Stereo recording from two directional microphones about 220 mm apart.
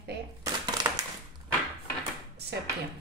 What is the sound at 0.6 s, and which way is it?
Crushing, 20° right (ahead or behind).